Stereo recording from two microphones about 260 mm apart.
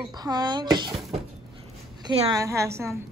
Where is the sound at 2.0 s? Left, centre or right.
Centre.